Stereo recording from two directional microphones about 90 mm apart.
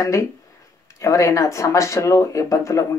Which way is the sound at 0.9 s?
35° left (ahead or behind).